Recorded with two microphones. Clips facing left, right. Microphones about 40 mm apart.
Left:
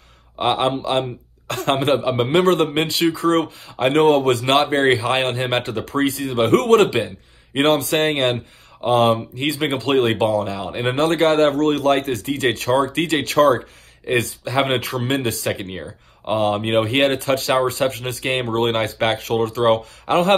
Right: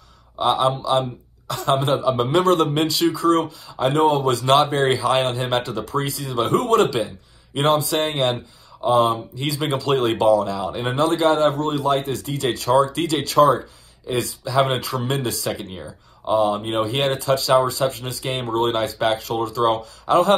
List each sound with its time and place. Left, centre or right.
0.4 s a man's voice: left
6.5 s a man's voice: left
11.0 s speech: left
12.1 s a man's voice: left
16.3 s speech: left